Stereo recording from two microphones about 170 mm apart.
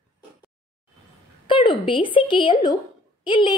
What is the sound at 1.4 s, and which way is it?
A woman's voice, 30° left (ahead or behind).